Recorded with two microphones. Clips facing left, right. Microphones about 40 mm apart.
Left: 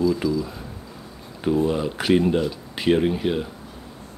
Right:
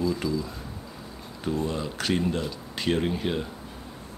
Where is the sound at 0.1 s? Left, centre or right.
Centre.